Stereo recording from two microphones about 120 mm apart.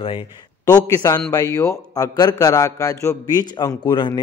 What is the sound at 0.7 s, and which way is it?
A man's voice, 30° left (ahead or behind).